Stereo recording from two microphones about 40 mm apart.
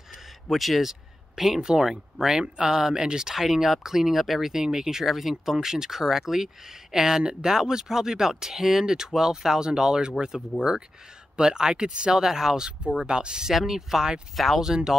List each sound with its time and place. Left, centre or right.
0.5 s speech: centre
3.3 s speech: centre
11.3 s speech: centre
13.5 s speech: centre